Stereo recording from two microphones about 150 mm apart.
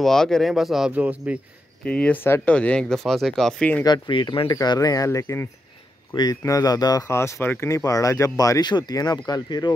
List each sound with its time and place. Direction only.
0.0 s speech: 5° left (ahead or behind)
1.9 s speech: 10° left (ahead or behind)
3.8 s speech: 30° left (ahead or behind)